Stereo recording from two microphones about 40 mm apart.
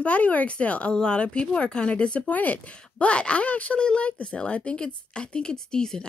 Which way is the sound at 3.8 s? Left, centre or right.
Left.